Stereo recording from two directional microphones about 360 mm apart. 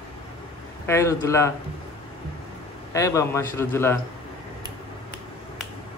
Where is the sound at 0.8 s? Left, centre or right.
Centre.